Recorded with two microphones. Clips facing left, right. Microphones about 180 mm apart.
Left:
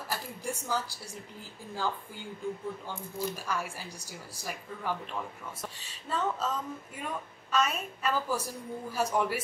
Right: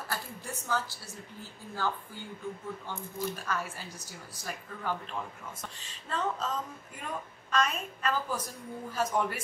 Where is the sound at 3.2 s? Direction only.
10° left (ahead or behind).